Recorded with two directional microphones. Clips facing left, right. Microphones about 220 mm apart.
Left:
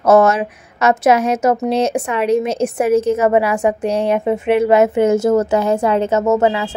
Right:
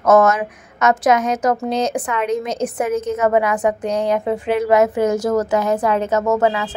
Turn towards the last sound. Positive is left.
turn(degrees=25)  # may be behind; listen again after turning